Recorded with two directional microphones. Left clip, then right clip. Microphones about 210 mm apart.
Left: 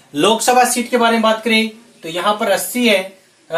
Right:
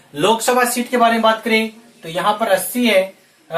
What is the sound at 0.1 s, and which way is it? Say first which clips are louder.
Speech: left 2 dB; 25° left (ahead or behind).